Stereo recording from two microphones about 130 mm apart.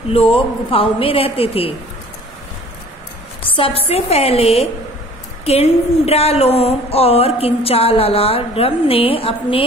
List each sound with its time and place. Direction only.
0.1 s speech: 45° left (ahead or behind)
3.5 s speech: 45° left (ahead or behind)